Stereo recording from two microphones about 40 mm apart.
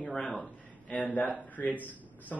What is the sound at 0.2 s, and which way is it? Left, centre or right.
Speech, centre.